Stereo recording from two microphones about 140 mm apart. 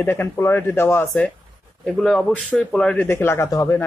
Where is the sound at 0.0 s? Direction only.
15° left (ahead or behind).